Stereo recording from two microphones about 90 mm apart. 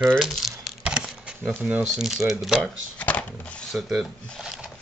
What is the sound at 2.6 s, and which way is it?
Shuffling cards, 15° left (ahead or behind).